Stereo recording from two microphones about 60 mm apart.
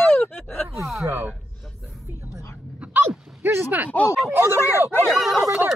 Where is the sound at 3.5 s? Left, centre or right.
Right.